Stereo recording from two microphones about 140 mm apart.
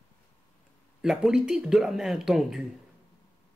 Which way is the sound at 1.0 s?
5° right (ahead or behind).